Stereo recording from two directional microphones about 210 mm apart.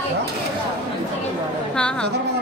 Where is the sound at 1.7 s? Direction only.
5° left (ahead or behind).